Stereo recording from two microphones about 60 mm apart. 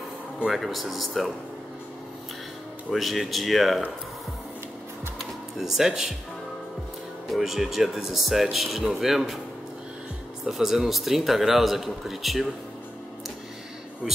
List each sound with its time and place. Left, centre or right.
0.5 s speech: centre
2.9 s speech: centre
5.2 s a sound: centre
7.2 s speech: centre
10.4 s speech: centre